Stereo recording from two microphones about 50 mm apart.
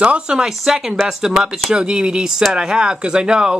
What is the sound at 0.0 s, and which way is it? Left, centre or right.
Speech, right.